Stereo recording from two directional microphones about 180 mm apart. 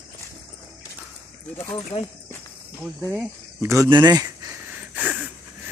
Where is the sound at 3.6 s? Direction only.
15° right (ahead or behind).